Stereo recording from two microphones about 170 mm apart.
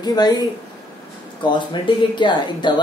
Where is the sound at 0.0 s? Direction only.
25° left (ahead or behind).